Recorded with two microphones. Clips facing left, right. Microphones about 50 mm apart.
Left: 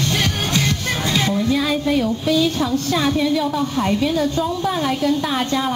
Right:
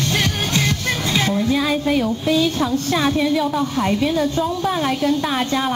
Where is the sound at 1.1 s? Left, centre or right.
Centre.